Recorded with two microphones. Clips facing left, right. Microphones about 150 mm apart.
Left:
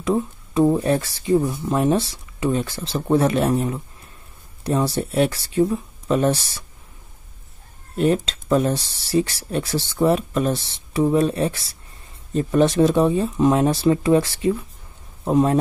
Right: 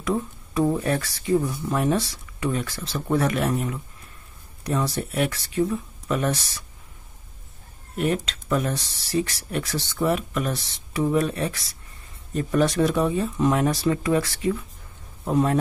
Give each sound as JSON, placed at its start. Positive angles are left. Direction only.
{"t": 0.0, "sound": "speech", "side_deg": 25}
{"t": 7.9, "sound": "speech", "side_deg": 30}